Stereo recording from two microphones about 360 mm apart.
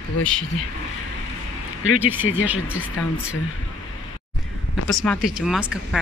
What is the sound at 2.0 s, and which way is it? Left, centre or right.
Speech, centre.